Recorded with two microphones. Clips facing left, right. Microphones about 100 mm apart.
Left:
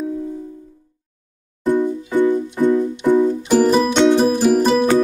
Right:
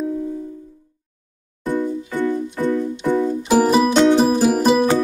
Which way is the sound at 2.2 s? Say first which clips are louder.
Left 3 dB; 15° left (ahead or behind).